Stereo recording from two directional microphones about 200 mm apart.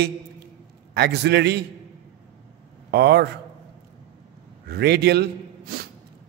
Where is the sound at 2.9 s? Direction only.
55° right (ahead or behind).